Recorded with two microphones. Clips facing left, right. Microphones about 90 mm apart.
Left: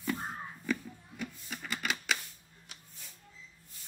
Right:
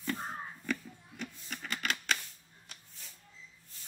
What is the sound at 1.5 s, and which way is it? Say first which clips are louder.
Music: even; 5° left (ahead or behind).